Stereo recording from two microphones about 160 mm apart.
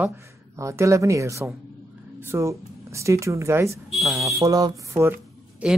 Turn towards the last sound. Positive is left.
turn(degrees=-10)  # may be behind; listen again after turning